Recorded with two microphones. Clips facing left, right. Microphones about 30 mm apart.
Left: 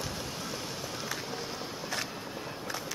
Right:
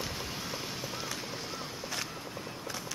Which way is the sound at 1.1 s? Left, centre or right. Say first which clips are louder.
Left 2 dB; centre.